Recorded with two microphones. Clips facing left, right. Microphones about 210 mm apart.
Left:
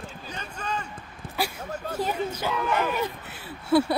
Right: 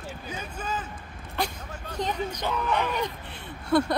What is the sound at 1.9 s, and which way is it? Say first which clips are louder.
Speech: left 1 dB; 5° left (ahead or behind).